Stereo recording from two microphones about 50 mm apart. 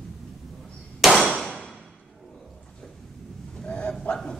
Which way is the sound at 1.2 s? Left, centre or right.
Centre.